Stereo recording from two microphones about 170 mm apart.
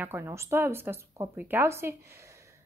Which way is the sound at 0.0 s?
15° right (ahead or behind).